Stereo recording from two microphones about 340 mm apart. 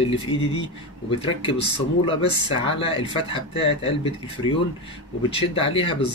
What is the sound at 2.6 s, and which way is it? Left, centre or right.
Speech, centre.